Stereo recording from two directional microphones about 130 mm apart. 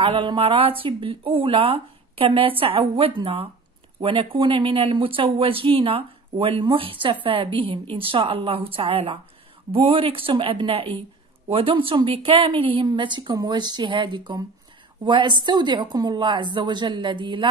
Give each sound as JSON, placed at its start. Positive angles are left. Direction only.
{"t": 0.0, "sound": "a woman's voice", "side_deg": -40}